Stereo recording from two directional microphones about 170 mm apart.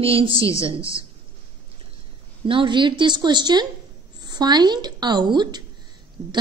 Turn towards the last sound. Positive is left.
turn(degrees=-25)  # may be behind; listen again after turning